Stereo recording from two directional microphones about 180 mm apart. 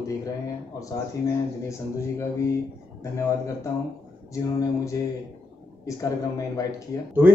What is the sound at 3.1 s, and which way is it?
Speech, 15° left (ahead or behind).